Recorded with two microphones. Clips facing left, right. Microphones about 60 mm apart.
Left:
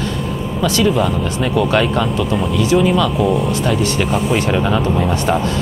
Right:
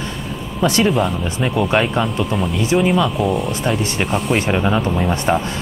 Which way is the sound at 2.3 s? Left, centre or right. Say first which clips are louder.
Left 3 dB; centre.